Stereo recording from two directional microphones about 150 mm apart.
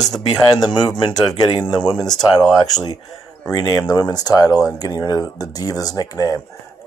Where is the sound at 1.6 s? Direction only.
5° left (ahead or behind).